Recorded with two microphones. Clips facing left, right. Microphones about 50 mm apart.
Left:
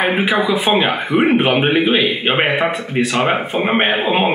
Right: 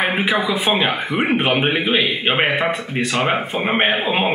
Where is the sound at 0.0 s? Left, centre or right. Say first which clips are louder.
Left 3 dB; centre.